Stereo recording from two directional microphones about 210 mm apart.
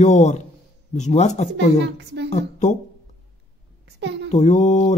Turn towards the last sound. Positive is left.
turn(degrees=35)  # may be behind; listen again after turning